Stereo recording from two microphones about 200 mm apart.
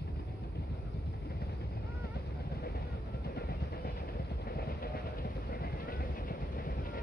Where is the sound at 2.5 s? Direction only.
50° left (ahead or behind).